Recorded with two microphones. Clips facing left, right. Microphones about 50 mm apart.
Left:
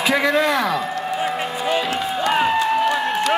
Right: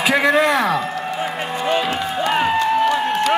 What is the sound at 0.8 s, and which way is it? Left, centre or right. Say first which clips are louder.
Run: even; centre.